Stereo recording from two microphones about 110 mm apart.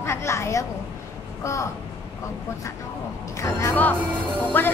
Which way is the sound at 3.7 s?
15° left (ahead or behind).